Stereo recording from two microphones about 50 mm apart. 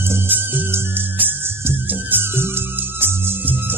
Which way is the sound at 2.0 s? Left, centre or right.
Right.